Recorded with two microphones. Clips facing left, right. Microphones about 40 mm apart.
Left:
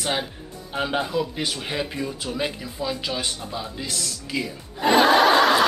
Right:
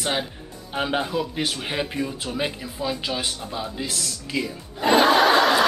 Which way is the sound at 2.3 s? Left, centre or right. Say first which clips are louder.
Even; centre.